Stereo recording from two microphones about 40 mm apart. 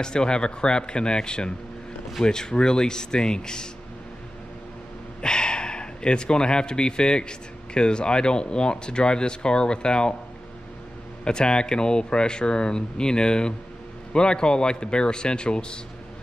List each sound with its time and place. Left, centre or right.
0.0 s speech: left
5.2 s speech: left
11.2 s speech: left